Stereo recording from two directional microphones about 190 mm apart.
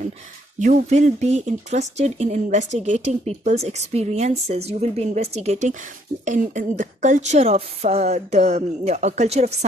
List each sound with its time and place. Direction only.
0.6 s speech: 40° right (ahead or behind)